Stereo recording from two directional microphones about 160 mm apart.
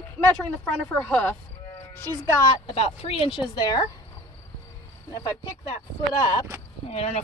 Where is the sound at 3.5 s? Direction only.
25° left (ahead or behind).